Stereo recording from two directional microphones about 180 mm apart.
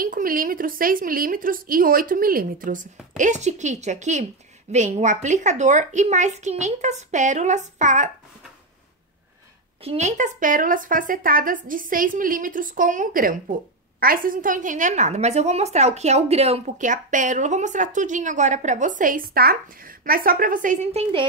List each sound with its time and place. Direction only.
0.0 s a woman's voice: 50° right (ahead or behind)
9.8 s speech: 40° right (ahead or behind)